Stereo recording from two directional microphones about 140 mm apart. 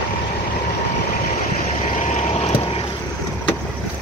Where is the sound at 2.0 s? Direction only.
50° left (ahead or behind).